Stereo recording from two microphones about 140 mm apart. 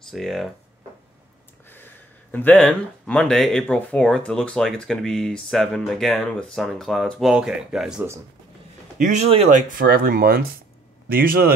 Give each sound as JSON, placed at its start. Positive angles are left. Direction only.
{"t": 0.1, "sound": "speech", "side_deg": 0}
{"t": 2.3, "sound": "speech", "side_deg": 10}
{"t": 8.9, "sound": "speech", "side_deg": -60}